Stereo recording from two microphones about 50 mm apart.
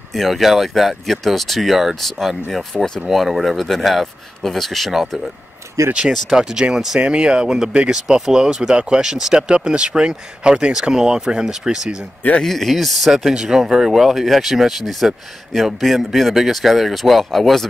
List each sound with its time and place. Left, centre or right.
0.1 s speech: centre
3.1 s speech: centre
5.8 s speech: right
6.3 s speech: centre
12.4 s speech: centre